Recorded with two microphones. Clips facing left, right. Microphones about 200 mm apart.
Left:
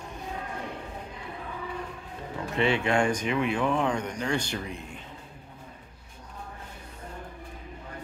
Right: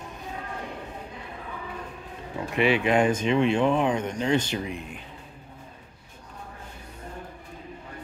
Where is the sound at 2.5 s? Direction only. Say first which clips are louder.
Right 3 dB; 15° right (ahead or behind).